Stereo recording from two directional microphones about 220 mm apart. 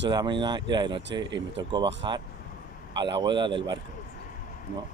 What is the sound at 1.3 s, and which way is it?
Speech, 55° right (ahead or behind).